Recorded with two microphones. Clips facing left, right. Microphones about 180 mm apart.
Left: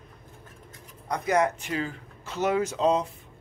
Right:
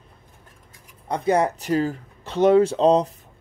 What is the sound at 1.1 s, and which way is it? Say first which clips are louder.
Speech: right 4 dB; 30° right (ahead or behind).